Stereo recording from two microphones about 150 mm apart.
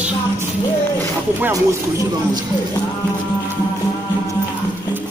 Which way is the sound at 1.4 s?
20° right (ahead or behind).